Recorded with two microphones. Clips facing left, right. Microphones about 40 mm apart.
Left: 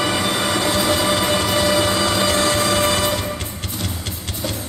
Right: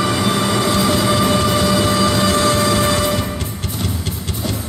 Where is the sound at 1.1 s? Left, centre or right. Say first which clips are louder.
Right 3 dB; left.